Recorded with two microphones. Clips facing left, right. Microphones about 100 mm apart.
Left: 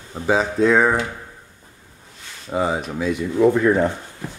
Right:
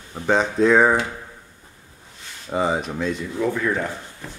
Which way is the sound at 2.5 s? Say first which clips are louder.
Even; centre (ahead or behind).